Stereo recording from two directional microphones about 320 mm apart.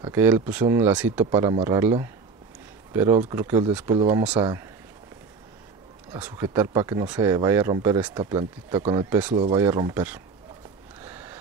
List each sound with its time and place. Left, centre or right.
0.0 s speech: centre
6.1 s speech: centre
11.0 s a sound: centre